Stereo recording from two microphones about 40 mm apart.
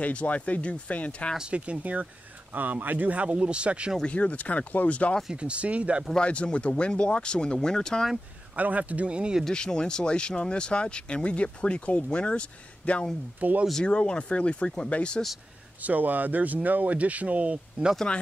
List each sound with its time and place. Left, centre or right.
0.0 s speech: left
1.4 s speech: right
2.5 s speech: right
4.0 s speech: left
5.3 s speech: right
6.1 s speech: left
8.5 s speech: right
9.5 s speech: left
13.4 s speech: right
13.8 s speech: left
15.8 s speech: right
18.1 s speech: left